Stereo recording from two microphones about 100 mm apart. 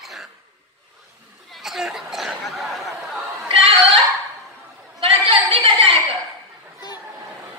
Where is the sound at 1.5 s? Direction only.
5° right (ahead or behind).